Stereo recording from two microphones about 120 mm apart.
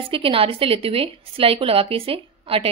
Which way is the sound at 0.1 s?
50° right (ahead or behind).